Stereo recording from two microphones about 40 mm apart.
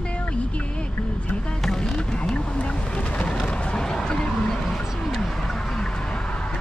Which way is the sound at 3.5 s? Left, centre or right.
Left.